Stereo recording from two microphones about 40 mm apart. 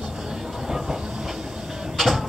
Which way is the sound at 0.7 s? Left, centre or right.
Centre.